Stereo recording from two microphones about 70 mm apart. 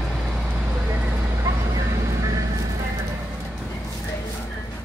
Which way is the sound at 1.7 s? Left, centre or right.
Right.